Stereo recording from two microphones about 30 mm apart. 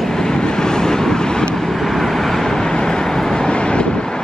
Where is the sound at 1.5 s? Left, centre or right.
Centre.